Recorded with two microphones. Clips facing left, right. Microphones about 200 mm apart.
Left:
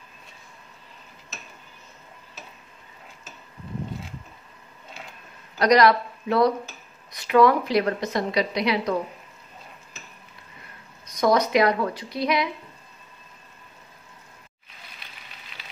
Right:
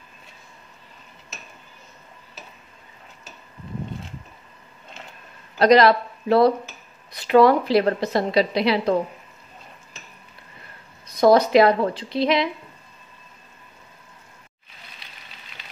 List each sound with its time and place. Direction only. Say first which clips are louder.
5.6 s speech: right 3 dB; 30° right (ahead or behind)
11.1 s a woman's voice: right 5 dB; 30° right (ahead or behind)